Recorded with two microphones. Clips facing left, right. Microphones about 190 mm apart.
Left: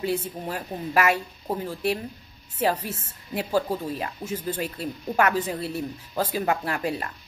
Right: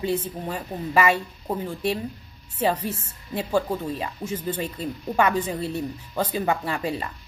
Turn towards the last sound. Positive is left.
turn(degrees=5)  # may be behind; listen again after turning